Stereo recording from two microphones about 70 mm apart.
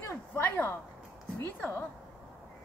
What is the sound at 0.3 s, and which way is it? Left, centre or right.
Speech, left.